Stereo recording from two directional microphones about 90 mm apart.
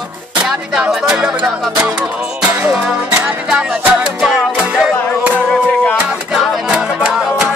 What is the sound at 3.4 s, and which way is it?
Music, 10° right (ahead or behind).